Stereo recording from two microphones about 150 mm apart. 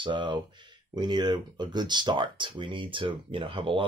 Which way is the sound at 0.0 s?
30° right (ahead or behind).